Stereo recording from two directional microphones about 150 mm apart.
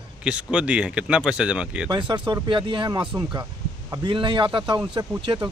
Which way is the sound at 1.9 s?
30° right (ahead or behind).